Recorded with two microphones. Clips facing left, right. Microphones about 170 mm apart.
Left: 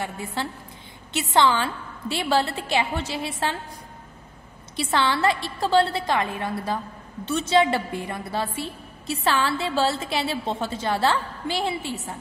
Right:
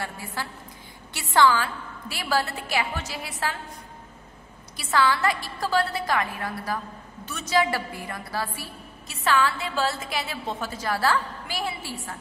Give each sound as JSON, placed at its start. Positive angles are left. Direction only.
{"t": 0.0, "sound": "a woman's voice", "side_deg": 25}
{"t": 4.7, "sound": "a woman's voice", "side_deg": 30}